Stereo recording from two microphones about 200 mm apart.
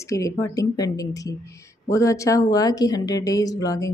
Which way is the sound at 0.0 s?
15° left (ahead or behind).